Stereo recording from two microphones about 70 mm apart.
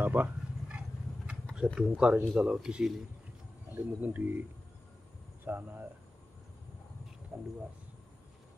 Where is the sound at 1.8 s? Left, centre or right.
Centre.